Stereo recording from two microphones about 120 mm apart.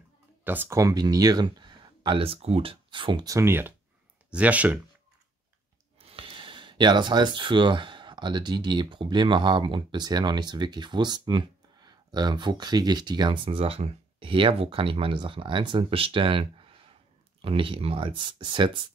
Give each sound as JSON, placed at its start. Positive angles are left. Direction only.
{"t": 0.4, "sound": "speech", "side_deg": -15}
{"t": 0.7, "sound": "speech", "side_deg": -30}
{"t": 3.3, "sound": "speech", "side_deg": -20}
{"t": 5.9, "sound": "speech", "side_deg": -50}
{"t": 13.5, "sound": "speech", "side_deg": -50}